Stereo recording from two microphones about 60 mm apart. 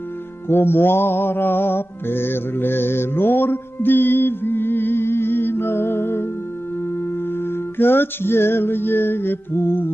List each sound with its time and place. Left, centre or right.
0.5 s music: left
7.3 s music: left